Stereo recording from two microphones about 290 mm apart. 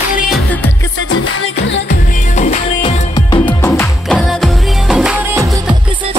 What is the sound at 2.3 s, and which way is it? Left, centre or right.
Music, left.